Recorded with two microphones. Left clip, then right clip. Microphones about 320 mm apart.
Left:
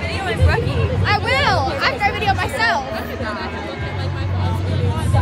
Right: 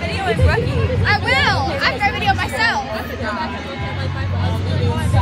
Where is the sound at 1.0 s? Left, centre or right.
Centre.